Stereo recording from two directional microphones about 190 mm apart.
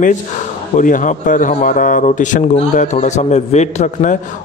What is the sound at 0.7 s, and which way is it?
A man's voice, 45° left (ahead or behind).